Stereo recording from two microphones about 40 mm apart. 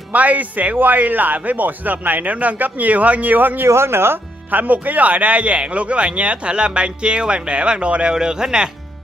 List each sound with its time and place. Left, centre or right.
0.1 s a man's voice: right
3.7 s speech: right
4.5 s speech: right; by 8.6 s centre